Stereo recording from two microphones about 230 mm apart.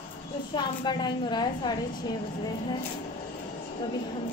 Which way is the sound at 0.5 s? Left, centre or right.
Centre.